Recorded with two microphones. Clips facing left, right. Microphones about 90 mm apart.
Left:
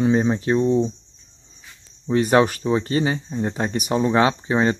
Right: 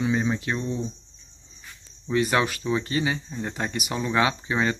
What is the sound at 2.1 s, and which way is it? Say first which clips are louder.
Speech: left 6 dB; 35° left (ahead or behind).